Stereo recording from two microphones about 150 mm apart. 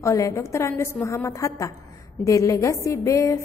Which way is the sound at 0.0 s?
20° left (ahead or behind).